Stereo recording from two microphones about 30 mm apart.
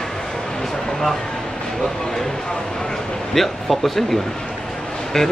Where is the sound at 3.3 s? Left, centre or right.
Centre.